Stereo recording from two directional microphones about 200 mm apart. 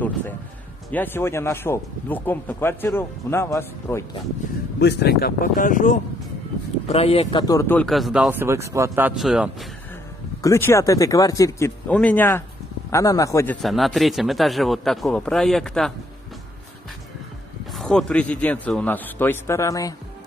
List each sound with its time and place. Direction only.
0.9 s speech: 10° left (ahead or behind)
4.7 s speech: 55° left (ahead or behind); by 7.4 s 30° left (ahead or behind)
7.4 s a man's voice: 15° left (ahead or behind)
10.4 s speech: 15° left (ahead or behind)
13.6 s a man's voice: centre (ahead or behind)
17.7 s speech: 5° left (ahead or behind)